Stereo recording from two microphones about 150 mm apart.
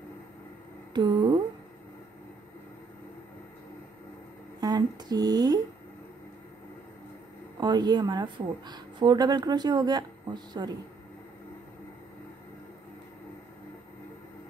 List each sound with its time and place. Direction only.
0.9 s a sound: 30° right (ahead or behind)
4.6 s speech: 25° right (ahead or behind)
7.6 s speech: 30° right (ahead or behind)